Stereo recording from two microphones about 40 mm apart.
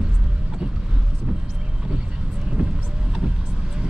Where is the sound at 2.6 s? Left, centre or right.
Right.